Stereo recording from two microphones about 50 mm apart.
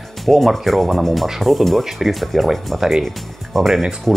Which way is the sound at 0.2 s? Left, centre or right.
Centre.